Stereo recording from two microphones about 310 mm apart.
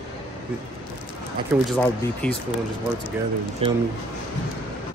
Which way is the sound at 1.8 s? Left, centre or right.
Centre.